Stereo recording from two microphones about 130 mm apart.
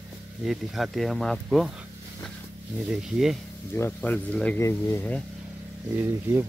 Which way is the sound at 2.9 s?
5° right (ahead or behind).